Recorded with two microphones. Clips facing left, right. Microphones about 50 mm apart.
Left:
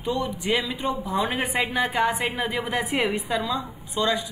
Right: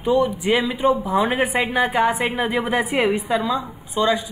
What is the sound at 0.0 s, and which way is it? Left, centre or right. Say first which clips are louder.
A woman's voice: right 8 dB; centre.